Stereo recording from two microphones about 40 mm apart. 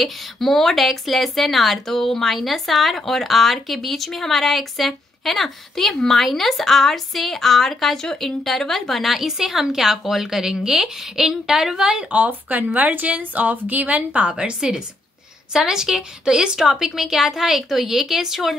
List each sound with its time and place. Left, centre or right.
0.0 s a woman's voice: centre
12.1 s a woman's voice: right
14.3 s a woman's voice: centre